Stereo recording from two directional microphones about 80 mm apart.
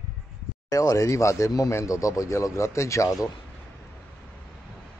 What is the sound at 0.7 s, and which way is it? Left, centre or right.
Speech, left.